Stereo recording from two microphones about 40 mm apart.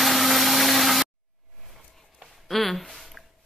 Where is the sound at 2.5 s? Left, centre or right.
Centre.